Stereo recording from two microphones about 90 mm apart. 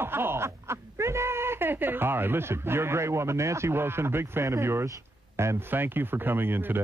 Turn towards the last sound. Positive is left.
turn(degrees=-25)  # may be behind; listen again after turning